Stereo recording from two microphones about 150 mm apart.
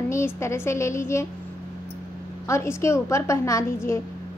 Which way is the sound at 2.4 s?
20° left (ahead or behind).